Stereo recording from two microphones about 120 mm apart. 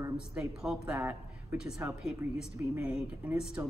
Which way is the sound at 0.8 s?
20° right (ahead or behind).